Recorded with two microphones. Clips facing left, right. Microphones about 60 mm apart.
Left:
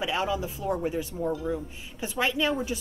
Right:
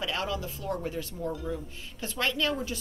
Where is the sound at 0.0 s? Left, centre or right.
Centre.